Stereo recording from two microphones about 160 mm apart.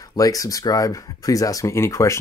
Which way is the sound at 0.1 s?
20° left (ahead or behind).